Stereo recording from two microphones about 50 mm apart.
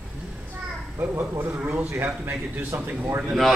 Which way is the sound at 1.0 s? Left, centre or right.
Right.